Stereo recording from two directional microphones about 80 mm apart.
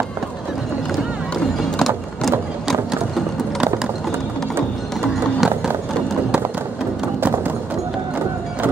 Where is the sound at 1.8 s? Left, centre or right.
Centre.